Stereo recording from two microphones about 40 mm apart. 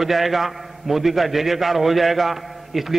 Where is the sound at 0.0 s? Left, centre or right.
Centre.